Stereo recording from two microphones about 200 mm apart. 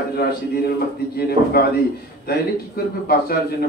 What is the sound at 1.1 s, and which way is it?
A man's voice, 50° left (ahead or behind).